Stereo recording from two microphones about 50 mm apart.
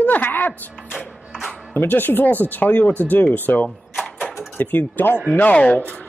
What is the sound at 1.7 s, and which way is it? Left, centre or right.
Speech, left.